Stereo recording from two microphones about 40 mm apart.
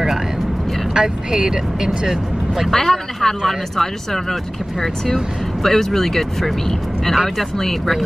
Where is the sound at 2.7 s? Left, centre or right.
Centre.